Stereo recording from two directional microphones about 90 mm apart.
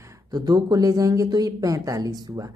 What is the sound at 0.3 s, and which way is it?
Speech, 50° right (ahead or behind).